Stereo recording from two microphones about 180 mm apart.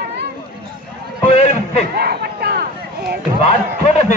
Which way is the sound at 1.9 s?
60° right (ahead or behind).